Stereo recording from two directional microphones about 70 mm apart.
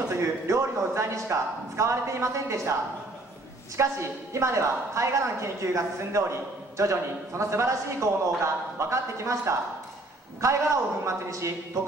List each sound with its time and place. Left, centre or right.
0.1 s a man's voice: right
3.7 s a man's voice: right